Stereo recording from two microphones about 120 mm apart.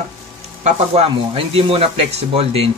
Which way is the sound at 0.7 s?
55° right (ahead or behind).